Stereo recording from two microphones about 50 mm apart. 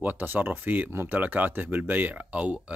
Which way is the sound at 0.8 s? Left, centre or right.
Right.